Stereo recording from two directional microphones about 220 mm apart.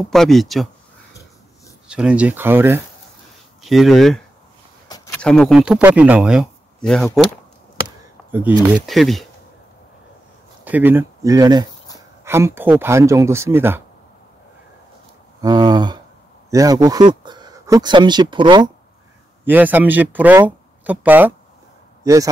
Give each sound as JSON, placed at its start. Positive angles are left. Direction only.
{"t": 0.1, "sound": "speech", "side_deg": 0}
{"t": 1.9, "sound": "speech", "side_deg": -5}
{"t": 4.8, "sound": "a sound", "side_deg": 15}
{"t": 5.2, "sound": "speech", "side_deg": 5}
{"t": 8.3, "sound": "speech", "side_deg": -10}
{"t": 10.6, "sound": "speech", "side_deg": -10}
{"t": 15.4, "sound": "a sound", "side_deg": -20}
{"t": 16.4, "sound": "speech", "side_deg": -15}
{"t": 19.4, "sound": "a man's voice", "side_deg": -10}